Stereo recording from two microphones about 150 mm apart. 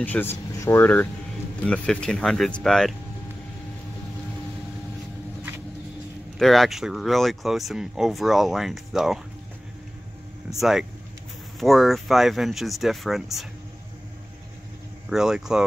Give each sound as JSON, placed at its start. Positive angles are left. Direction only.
{"t": 0.0, "sound": "speech", "side_deg": 15}
{"t": 1.7, "sound": "speech", "side_deg": 5}
{"t": 6.3, "sound": "speech", "side_deg": 0}
{"t": 10.6, "sound": "speech", "side_deg": -5}
{"t": 15.0, "sound": "speech", "side_deg": -5}